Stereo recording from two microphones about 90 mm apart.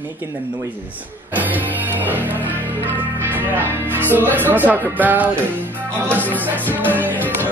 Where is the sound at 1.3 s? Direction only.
20° right (ahead or behind).